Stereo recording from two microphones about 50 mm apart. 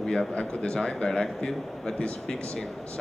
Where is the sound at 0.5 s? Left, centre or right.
Centre.